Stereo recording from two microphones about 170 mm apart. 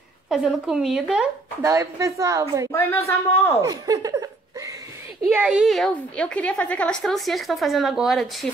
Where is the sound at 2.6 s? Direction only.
15° left (ahead or behind).